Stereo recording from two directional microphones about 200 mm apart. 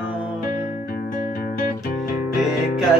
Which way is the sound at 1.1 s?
45° left (ahead or behind).